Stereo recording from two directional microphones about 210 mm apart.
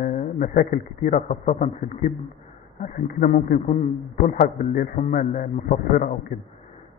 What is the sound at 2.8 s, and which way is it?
A man's voice, 40° left (ahead or behind).